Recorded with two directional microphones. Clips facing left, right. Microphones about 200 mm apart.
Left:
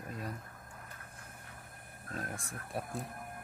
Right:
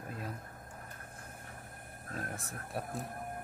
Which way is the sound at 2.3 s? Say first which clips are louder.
Even; centre (ahead or behind).